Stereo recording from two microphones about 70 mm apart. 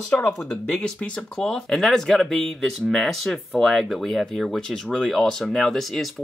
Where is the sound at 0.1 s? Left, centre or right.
Centre.